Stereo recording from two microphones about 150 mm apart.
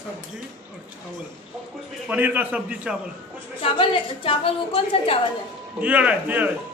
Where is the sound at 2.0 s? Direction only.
10° right (ahead or behind).